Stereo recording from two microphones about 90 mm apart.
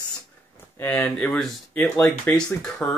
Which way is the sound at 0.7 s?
20° left (ahead or behind).